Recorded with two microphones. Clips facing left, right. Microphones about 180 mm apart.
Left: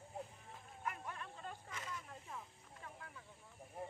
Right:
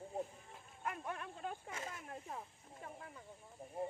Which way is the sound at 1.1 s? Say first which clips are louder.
Right 4 dB; 60° right (ahead or behind).